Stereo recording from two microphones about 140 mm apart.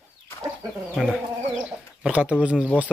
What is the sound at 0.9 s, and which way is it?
Speech, 5° left (ahead or behind).